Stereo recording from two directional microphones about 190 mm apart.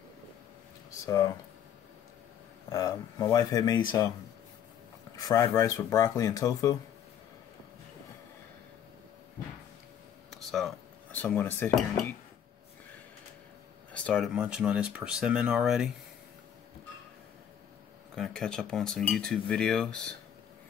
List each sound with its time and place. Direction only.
1.0 s speech: 20° left (ahead or behind)
2.7 s speech: 15° left (ahead or behind)
5.1 s speech: 20° left (ahead or behind)
10.3 s dishes: centre (ahead or behind)
13.9 s a sound: 5° left (ahead or behind)
14.3 s speech: 5° right (ahead or behind)
18.1 s speech: 5° left (ahead or behind)